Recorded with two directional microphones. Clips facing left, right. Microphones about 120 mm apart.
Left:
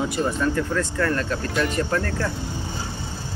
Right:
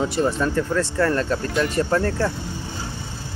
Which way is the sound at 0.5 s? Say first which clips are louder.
Right 3 dB; 30° right (ahead or behind).